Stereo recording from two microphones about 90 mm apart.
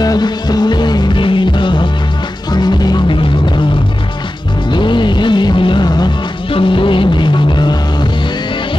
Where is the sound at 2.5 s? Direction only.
50° left (ahead or behind).